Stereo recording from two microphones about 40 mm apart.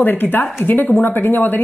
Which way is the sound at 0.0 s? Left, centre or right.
Left.